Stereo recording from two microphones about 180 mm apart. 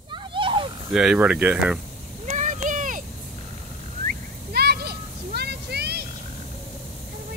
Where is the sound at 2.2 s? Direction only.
45° right (ahead or behind).